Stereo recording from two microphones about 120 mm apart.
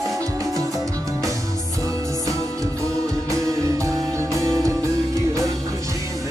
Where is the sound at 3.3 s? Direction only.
30° right (ahead or behind).